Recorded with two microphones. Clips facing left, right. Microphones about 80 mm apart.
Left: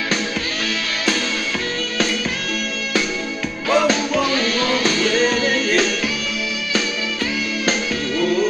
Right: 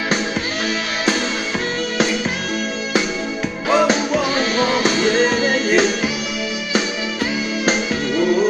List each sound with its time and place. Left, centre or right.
3.6 s music: right
7.6 s music: centre